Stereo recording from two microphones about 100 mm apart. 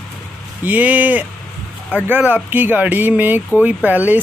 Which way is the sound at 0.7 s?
15° right (ahead or behind).